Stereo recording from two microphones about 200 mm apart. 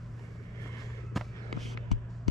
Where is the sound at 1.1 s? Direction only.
Centre (ahead or behind).